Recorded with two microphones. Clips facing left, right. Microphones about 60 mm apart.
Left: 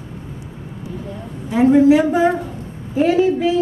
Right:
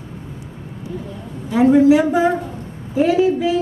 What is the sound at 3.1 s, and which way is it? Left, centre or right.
Speech, left.